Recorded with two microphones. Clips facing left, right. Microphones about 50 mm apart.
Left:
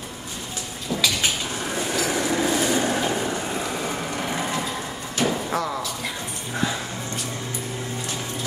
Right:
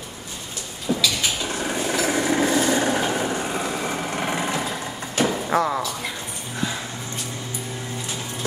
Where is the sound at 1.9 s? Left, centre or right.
Right.